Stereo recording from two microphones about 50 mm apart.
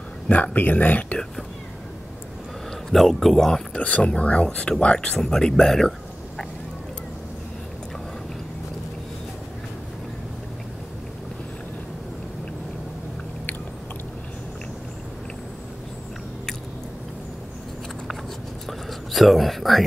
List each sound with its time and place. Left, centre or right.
0.3 s speech: left
2.9 s a man's voice: centre
3.7 s speech: left; by 6.4 s centre
18.7 s whispering: centre